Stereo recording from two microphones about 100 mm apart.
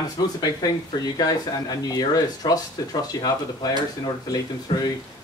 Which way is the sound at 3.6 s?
40° left (ahead or behind).